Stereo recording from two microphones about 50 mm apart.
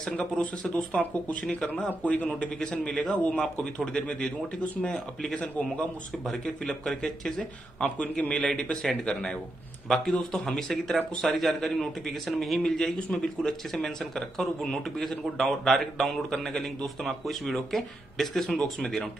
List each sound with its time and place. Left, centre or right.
0.2 s speech: left
7.8 s speech: left
8.8 s speech: centre